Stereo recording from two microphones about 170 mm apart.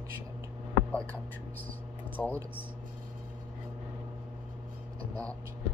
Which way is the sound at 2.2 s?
10° left (ahead or behind).